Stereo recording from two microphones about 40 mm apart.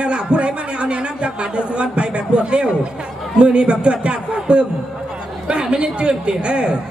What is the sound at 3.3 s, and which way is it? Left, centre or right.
A man's voice, right.